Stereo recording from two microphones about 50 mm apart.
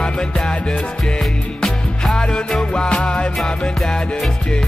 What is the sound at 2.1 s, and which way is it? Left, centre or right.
Music, centre.